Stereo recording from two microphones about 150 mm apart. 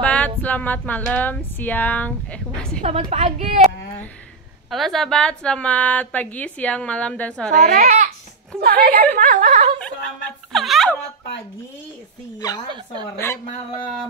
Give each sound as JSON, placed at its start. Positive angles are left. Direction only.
{"t": 0.0, "sound": "a sound", "side_deg": 10}
{"t": 1.1, "sound": "a woman's voice", "side_deg": 10}
{"t": 2.8, "sound": "a woman's voice", "side_deg": -45}
{"t": 4.6, "sound": "a woman's voice", "side_deg": 0}
{"t": 7.5, "sound": "a child's voice", "side_deg": -60}
{"t": 8.6, "sound": "a woman's voice", "side_deg": -90}
{"t": 9.8, "sound": "a sound", "side_deg": 5}
{"t": 12.4, "sound": "speech", "side_deg": 25}
{"t": 12.7, "sound": "speech", "side_deg": -30}